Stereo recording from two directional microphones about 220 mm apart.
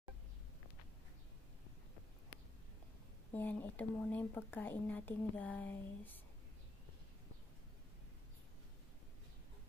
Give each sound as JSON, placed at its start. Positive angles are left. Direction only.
{"t": 3.3, "sound": "speech", "side_deg": 10}